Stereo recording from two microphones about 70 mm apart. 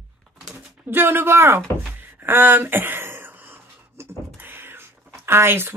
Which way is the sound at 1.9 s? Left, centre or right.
Right.